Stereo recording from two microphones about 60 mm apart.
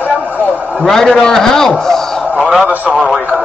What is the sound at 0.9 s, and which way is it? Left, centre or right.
A man's voice, centre.